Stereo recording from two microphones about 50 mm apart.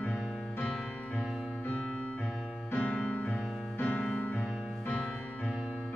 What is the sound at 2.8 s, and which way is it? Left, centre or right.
Music, left.